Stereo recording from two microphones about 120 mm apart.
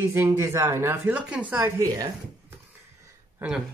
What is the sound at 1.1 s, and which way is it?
Speech, 10° right (ahead or behind).